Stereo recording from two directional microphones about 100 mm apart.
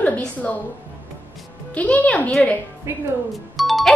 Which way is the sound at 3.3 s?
Centre (ahead or behind).